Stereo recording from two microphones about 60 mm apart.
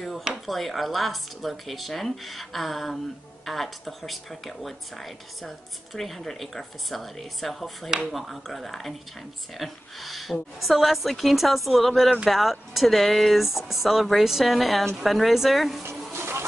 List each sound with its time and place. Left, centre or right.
0.5 s a woman's voice: centre
16.1 s patter: right